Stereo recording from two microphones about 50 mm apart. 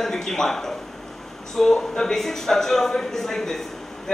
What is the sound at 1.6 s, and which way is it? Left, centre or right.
A man's voice, centre.